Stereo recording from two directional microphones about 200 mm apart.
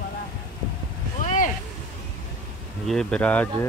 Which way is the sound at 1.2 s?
40° left (ahead or behind).